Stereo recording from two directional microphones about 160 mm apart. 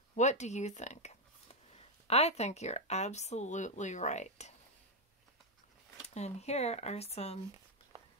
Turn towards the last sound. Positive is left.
turn(degrees=40)  # may be behind; listen again after turning